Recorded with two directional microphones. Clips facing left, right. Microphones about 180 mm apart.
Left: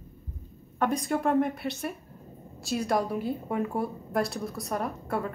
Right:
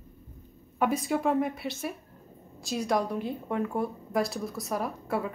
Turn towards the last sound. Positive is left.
turn(degrees=0)  # may be behind; listen again after turning